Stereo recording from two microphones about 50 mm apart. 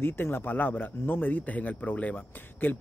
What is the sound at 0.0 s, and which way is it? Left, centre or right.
Speech, left.